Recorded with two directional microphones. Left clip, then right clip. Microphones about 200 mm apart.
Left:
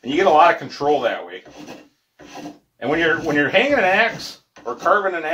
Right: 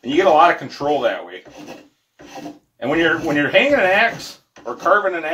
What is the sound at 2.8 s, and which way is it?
Speech, 15° left (ahead or behind).